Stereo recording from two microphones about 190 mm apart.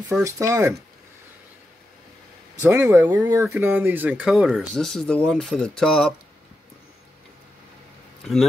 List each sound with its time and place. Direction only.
0.2 s speech: 15° right (ahead or behind)
2.6 s speech: 15° right (ahead or behind); by 6.0 s 5° left (ahead or behind)